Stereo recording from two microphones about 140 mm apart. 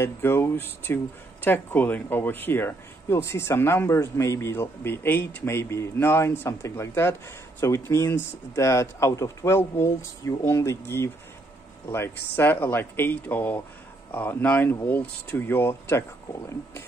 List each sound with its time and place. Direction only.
0.0 s speech: 15° left (ahead or behind)